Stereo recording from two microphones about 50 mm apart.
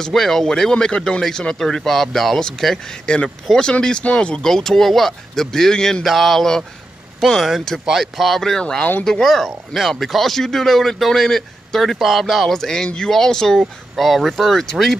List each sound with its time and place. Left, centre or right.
0.0 s speech: centre
4.0 s speech: left
4.4 s speech: centre
6.0 s speech: centre
8.5 s speech: centre
12.5 s speech: centre